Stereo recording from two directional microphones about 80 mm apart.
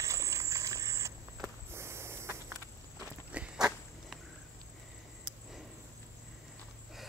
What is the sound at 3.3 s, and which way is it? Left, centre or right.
Walk, centre.